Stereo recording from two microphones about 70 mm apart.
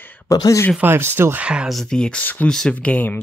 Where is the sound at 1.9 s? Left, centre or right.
Centre.